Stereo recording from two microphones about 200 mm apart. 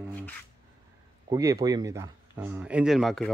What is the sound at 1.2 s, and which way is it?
Speech, 15° right (ahead or behind).